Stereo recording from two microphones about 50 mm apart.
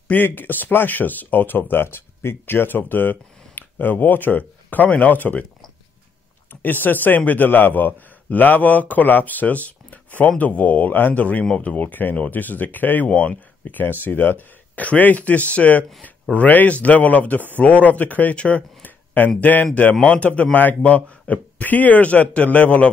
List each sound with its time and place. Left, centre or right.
0.1 s speech: left
6.5 s speech: left
13.1 s speech: left
13.7 s speech: left
18.3 s speech: left
18.8 s speech: left